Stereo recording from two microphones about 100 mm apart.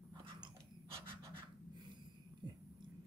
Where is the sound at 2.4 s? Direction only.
50° right (ahead or behind).